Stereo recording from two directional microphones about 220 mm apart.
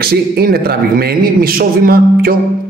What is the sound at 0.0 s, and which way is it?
A man's voice, 45° right (ahead or behind).